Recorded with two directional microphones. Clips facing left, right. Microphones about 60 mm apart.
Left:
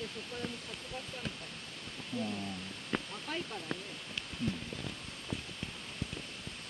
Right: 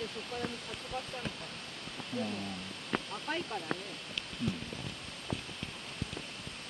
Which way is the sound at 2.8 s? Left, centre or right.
Centre.